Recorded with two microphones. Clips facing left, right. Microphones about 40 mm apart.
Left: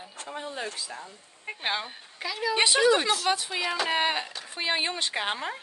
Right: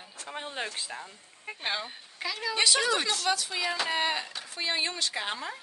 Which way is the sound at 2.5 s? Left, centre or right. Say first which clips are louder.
Left 2 dB; left.